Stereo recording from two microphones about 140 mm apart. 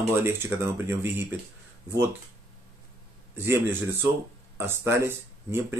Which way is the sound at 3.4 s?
20° right (ahead or behind).